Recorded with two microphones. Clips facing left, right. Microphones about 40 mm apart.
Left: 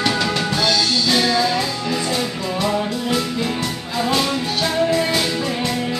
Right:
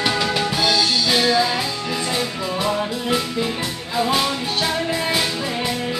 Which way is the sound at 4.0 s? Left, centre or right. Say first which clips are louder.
Even; centre.